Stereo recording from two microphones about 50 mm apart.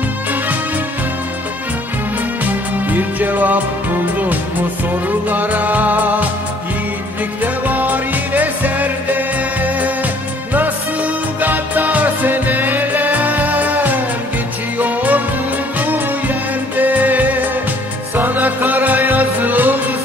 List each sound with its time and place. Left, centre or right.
2.4 s music: right
7.4 s music: right